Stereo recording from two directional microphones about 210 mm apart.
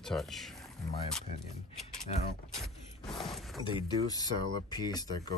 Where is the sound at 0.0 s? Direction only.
Centre (ahead or behind).